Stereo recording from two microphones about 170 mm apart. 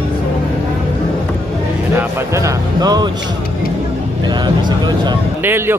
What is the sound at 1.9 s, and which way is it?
Speech, 15° right (ahead or behind).